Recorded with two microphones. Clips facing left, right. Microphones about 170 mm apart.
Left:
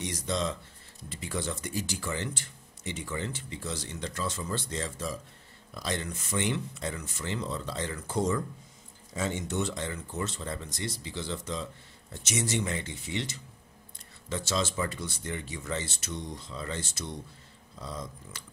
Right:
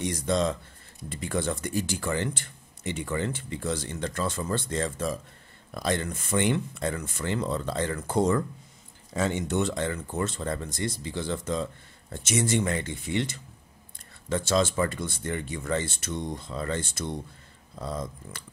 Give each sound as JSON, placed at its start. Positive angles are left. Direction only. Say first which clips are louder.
{"t": 0.0, "sound": "speech", "louder": "right 6 dB", "side_deg": -50}